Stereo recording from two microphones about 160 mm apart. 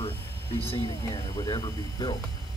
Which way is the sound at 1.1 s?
20° left (ahead or behind).